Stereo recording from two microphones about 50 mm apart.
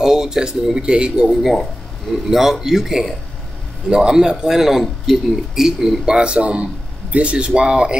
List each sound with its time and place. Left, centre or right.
0.0 s a man's voice: centre
1.4 s a man's voice: centre